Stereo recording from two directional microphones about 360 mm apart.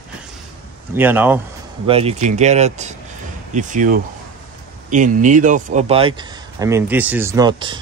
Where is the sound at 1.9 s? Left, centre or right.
Centre.